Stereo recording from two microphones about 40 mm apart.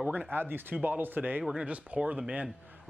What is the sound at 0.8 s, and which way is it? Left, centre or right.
Speech, right.